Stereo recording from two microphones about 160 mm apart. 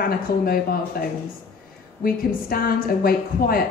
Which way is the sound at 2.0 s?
65° left (ahead or behind).